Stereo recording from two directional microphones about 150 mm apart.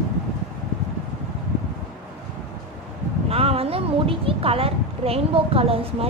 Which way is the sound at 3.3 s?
40° right (ahead or behind).